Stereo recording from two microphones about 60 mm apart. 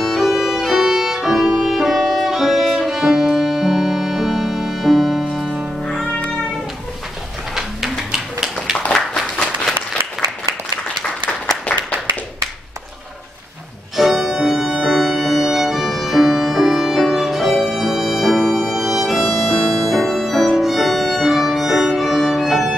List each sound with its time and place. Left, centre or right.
0.0 s violin: centre
1.6 s music: centre
6.0 s cat: left
7.5 s tap: centre
11.6 s a sound: left
13.9 s music: centre
16.0 s violin: centre